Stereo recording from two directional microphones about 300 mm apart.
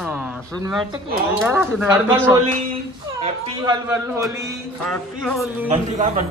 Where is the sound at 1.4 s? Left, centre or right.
Centre.